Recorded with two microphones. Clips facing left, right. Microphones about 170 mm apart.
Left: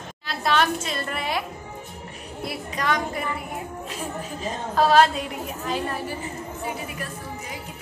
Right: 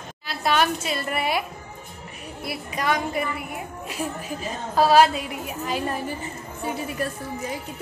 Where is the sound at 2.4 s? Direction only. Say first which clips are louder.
Even; 10° right (ahead or behind).